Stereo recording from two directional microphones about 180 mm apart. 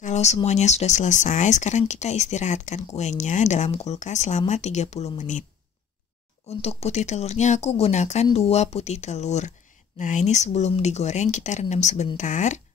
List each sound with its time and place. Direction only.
0.0 s speech: 40° left (ahead or behind)
6.6 s speech: 35° left (ahead or behind)